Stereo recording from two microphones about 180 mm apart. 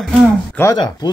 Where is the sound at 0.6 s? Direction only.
10° left (ahead or behind).